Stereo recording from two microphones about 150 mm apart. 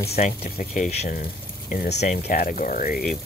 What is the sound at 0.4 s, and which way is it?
Speech, 60° left (ahead or behind).